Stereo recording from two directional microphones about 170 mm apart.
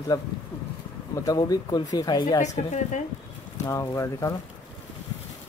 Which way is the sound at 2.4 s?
45° left (ahead or behind).